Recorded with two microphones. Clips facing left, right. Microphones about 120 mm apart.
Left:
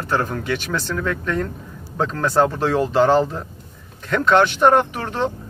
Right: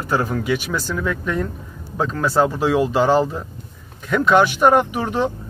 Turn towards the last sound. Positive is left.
turn(degrees=-10)  # may be behind; listen again after turning